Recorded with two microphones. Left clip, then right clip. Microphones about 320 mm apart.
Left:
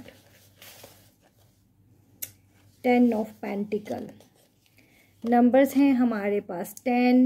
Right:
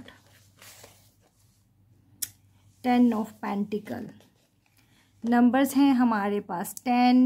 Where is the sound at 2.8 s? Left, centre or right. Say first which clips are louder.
Left 2 dB; right.